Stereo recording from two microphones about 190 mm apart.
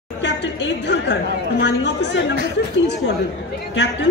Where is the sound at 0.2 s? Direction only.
65° left (ahead or behind).